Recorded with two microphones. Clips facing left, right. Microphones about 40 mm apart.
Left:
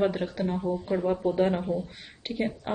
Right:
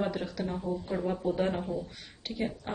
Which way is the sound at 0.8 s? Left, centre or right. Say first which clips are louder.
Left 5 dB; centre.